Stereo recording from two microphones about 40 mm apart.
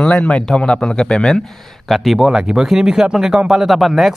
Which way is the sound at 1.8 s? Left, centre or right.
Centre.